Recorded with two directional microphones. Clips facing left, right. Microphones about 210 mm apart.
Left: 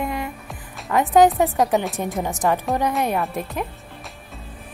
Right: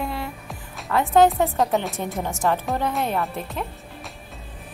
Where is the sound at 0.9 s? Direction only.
15° left (ahead or behind).